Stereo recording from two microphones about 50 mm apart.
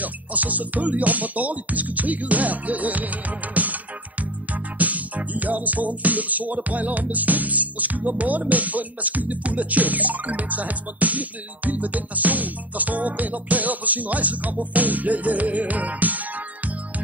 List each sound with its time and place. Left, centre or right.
0.0 s music: right